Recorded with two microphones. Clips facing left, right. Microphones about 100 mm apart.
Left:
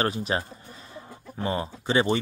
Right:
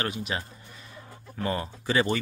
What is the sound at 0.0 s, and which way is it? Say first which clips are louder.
Speech: left 5 dB; 35° left (ahead or behind).